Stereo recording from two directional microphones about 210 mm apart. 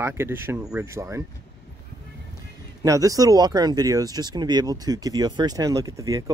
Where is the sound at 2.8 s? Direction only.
15° right (ahead or behind).